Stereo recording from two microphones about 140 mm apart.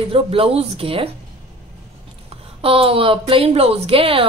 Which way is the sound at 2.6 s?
40° right (ahead or behind).